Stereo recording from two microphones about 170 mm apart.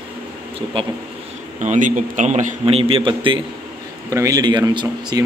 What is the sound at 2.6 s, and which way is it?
Speech, 35° right (ahead or behind).